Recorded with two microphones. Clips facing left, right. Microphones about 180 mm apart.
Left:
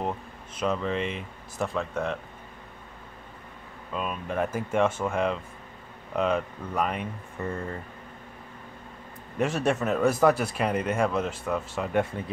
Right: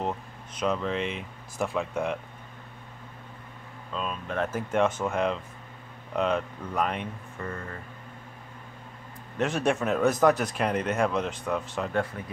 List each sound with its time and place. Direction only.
0.6 s speech: centre (ahead or behind)
3.9 s speech: 10° left (ahead or behind)
7.3 s speech: 25° left (ahead or behind)
9.4 s speech: 5° left (ahead or behind)
11.9 s speech: 25° left (ahead or behind)